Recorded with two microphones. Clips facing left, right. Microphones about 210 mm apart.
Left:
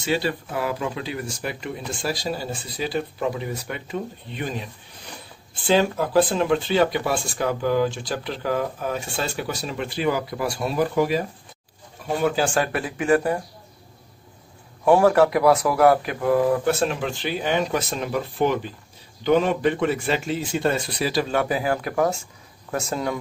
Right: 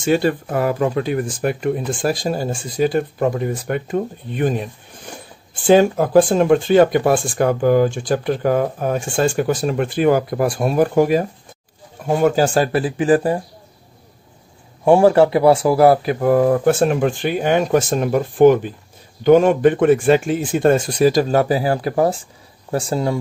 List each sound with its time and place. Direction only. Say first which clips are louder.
0.0 s speech: right 7 dB; 50° right (ahead or behind); by 13.4 s 30° right (ahead or behind)
14.9 s a man's voice: right 4 dB; 25° right (ahead or behind)
16.2 s speech: right 5 dB; 45° right (ahead or behind); by 23.1 s 30° right (ahead or behind)